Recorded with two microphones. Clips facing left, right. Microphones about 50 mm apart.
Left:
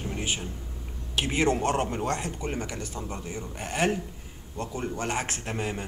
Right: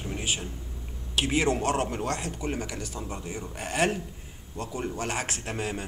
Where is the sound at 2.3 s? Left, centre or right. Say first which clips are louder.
Even; centre.